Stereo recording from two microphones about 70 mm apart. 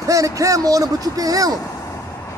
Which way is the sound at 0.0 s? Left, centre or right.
Right.